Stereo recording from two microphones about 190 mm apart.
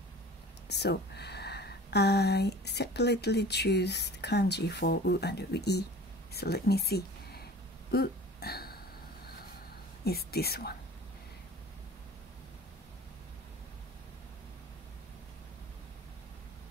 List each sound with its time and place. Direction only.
0.7 s speech: 60° left (ahead or behind)
7.9 s burping: 55° left (ahead or behind)
10.0 s speech: 55° left (ahead or behind)